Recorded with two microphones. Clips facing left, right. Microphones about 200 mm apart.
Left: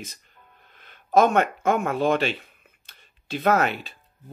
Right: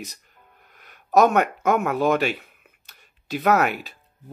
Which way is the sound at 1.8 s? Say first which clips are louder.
Right 1 dB; 25° left (ahead or behind).